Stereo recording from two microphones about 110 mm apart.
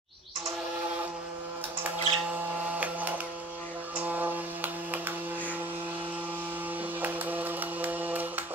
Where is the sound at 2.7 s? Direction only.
15° right (ahead or behind).